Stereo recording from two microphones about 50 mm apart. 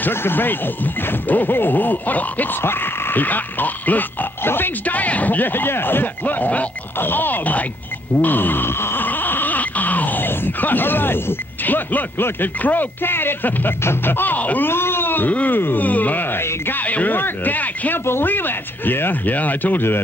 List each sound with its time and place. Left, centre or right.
0.1 s speech: left
2.6 s speech: left
8.2 s wail: left
14.7 s speech: left